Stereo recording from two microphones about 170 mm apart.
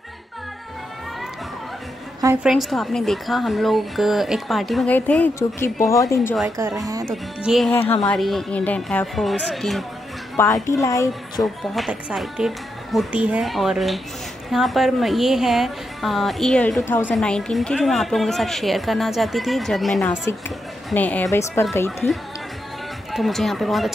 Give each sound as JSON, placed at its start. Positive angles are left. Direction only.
{"t": 2.4, "sound": "a woman's voice", "side_deg": 0}
{"t": 6.6, "sound": "speech", "side_deg": -15}
{"t": 7.1, "sound": "a woman's voice", "side_deg": 0}
{"t": 10.3, "sound": "a woman's voice", "side_deg": 15}
{"t": 11.4, "sound": "a woman's voice", "side_deg": 0}